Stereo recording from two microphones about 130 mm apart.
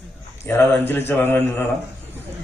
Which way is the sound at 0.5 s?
15° left (ahead or behind).